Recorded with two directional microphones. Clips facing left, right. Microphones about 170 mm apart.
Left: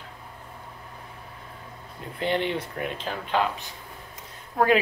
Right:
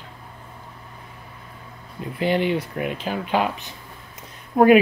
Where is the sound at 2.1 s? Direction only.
10° right (ahead or behind).